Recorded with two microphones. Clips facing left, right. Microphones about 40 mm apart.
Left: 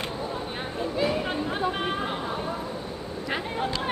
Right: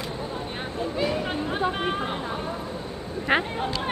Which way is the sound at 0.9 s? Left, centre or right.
Centre.